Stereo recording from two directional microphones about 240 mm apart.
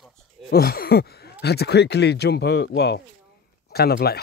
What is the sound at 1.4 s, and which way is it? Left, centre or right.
Speech, left.